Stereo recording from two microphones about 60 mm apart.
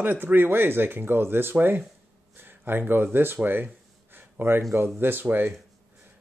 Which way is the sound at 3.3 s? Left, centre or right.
Right.